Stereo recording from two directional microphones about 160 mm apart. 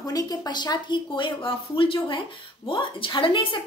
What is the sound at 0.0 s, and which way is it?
Speech, 25° left (ahead or behind).